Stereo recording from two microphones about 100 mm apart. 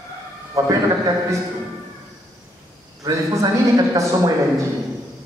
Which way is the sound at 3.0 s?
35° right (ahead or behind).